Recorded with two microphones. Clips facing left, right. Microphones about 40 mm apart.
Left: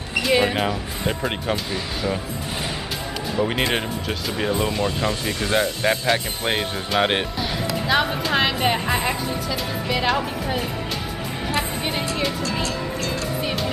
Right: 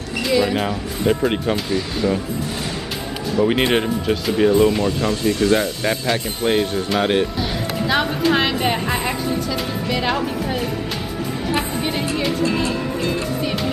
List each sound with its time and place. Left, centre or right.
0.3 s speech: left
0.6 s a woman's voice: centre
3.7 s a woman's voice: centre
4.8 s speech: centre
7.0 s speech: left
7.7 s a woman's voice: centre
11.8 s a woman's voice: centre
12.6 s music: right